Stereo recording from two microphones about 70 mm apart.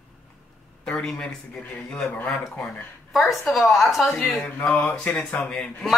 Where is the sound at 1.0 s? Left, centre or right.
Centre.